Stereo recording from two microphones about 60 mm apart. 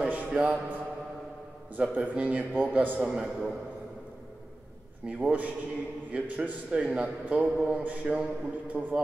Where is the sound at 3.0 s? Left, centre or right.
Centre.